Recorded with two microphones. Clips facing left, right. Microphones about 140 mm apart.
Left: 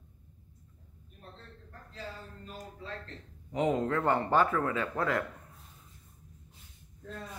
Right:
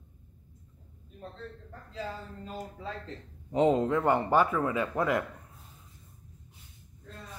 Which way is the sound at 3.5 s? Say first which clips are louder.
Right 5 dB; 25° right (ahead or behind).